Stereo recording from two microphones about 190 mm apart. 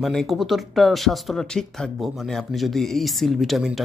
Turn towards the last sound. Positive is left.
turn(degrees=0)  # may be behind; listen again after turning